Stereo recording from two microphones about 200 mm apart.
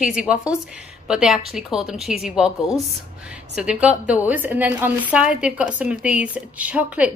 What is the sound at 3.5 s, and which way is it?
A woman's voice, 5° right (ahead or behind).